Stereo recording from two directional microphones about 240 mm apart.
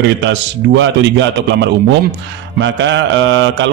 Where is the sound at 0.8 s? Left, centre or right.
Right.